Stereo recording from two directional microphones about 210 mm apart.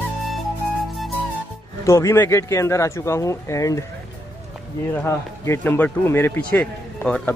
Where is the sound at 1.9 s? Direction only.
15° left (ahead or behind).